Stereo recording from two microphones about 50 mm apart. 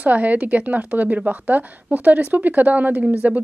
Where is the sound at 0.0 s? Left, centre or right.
Right.